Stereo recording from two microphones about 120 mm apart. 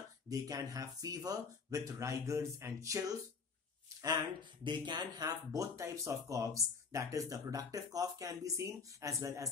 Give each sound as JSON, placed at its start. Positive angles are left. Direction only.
{"t": 0.3, "sound": "speech", "side_deg": -30}
{"t": 4.6, "sound": "speech", "side_deg": -40}